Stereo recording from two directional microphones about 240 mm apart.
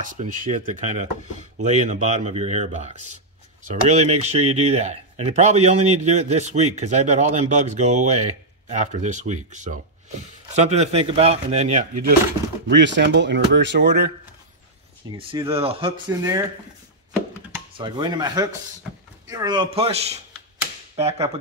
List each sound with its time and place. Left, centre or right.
0.0 s speech: right
12.6 s speech: right
15.1 s speech: right
17.7 s speech: centre